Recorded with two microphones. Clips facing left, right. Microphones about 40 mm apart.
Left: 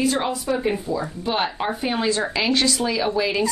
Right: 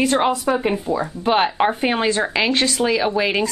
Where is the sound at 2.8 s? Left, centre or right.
Right.